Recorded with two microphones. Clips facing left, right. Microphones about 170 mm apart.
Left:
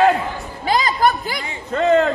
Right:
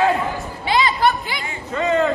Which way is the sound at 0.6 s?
40° left (ahead or behind).